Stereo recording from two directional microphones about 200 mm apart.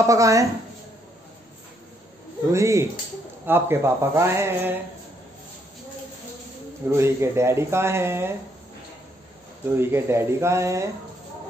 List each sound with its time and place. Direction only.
0.0 s speech: 15° right (ahead or behind)
2.5 s speech: 15° right (ahead or behind)
6.9 s speech: 15° right (ahead or behind)
9.7 s speech: 10° right (ahead or behind)